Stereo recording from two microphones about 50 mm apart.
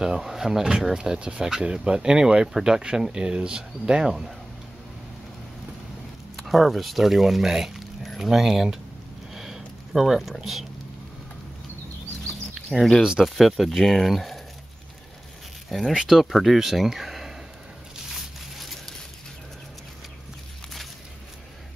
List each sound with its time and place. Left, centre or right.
0.0 s speech: centre
6.3 s speech: centre
9.3 s a sound: centre
9.9 s speech: centre
12.7 s speech: right
13.2 s speech: centre
15.9 s speech: centre
18.6 s a sound: centre